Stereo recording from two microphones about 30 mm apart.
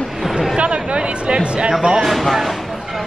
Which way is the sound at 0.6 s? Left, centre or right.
Right.